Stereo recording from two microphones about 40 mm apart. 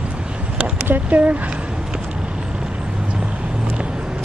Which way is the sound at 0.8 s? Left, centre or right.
Right.